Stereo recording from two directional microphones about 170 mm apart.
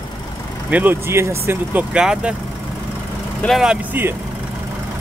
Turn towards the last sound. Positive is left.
turn(degrees=-10)  # may be behind; listen again after turning